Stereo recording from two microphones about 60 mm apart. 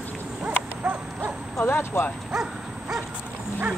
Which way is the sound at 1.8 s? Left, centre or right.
Left.